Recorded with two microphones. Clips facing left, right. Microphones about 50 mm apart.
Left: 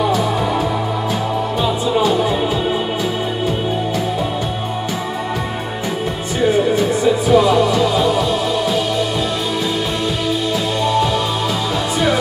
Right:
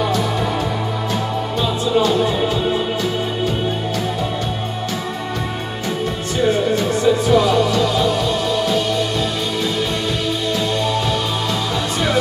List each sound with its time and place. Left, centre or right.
1.6 s music: centre
6.4 s music: centre
10.8 s music: centre